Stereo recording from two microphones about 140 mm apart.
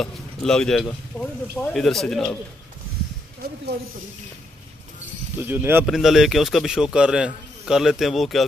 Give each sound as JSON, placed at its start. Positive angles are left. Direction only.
{"t": 0.0, "sound": "speech", "side_deg": 5}
{"t": 3.4, "sound": "speech", "side_deg": -90}
{"t": 5.4, "sound": "speech", "side_deg": -15}
{"t": 5.9, "sound": "speech", "side_deg": 0}